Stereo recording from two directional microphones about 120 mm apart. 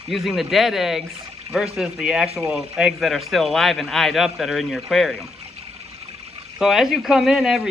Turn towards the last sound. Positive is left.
turn(degrees=-5)  # may be behind; listen again after turning